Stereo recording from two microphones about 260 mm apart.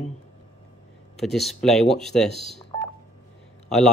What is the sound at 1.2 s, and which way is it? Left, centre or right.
Speech, centre.